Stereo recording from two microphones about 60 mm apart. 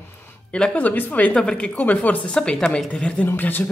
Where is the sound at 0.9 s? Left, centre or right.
Left.